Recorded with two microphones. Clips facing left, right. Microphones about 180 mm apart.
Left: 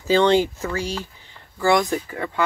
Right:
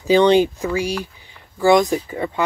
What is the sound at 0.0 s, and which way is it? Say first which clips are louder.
Speech: right 4 dB; 15° right (ahead or behind).